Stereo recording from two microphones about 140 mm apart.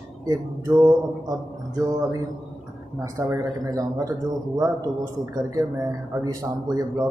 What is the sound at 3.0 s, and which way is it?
Speech, 25° right (ahead or behind).